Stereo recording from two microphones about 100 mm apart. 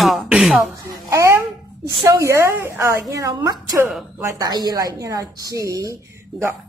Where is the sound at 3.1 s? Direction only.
35° right (ahead or behind).